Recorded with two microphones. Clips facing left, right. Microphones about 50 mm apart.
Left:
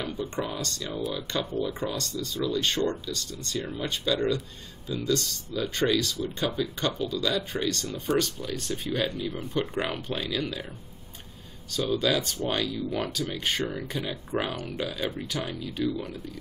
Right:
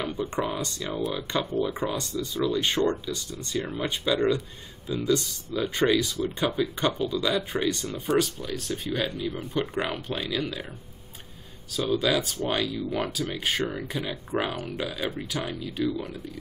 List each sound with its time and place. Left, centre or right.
0.0 s speech: centre
8.1 s speech: centre
11.7 s speech: centre